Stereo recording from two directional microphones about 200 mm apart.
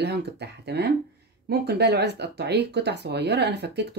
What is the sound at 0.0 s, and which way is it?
Speech, 55° right (ahead or behind).